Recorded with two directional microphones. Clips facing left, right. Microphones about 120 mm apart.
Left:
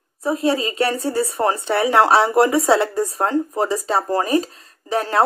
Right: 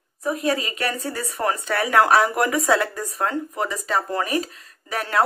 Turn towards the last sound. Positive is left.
turn(degrees=30)  # may be behind; listen again after turning